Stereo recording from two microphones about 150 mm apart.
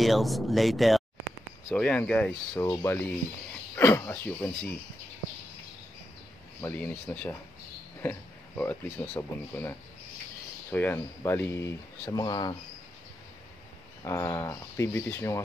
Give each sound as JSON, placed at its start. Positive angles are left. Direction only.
{"t": 0.0, "sound": "speech", "side_deg": 0}
{"t": 2.5, "sound": "speech", "side_deg": 25}
{"t": 6.6, "sound": "speech", "side_deg": 10}
{"t": 14.0, "sound": "speech", "side_deg": 20}